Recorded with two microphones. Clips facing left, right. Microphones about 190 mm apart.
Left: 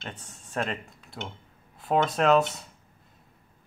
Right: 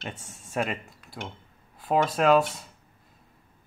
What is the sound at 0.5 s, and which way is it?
Speech, 10° right (ahead or behind).